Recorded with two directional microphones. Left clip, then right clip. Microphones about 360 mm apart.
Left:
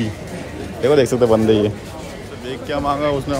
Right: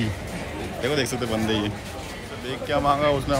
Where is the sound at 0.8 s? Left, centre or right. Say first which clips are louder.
Left 12 dB; left.